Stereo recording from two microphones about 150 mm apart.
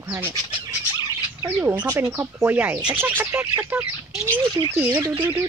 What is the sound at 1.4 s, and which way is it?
Speech, 15° right (ahead or behind).